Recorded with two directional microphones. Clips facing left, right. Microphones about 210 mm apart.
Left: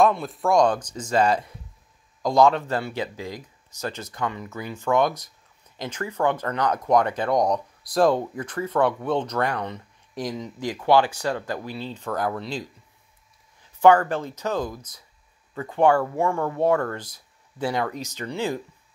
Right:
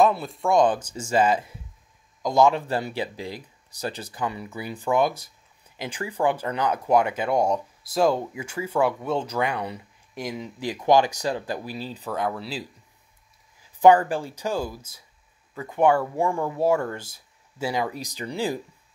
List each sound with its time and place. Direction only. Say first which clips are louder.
0.0 s speech: left 1 dB; centre (ahead or behind)
3.7 s speech: even; 35° right (ahead or behind)
4.1 s speech: even; 10° right (ahead or behind)
13.7 s speech: even; 15° right (ahead or behind)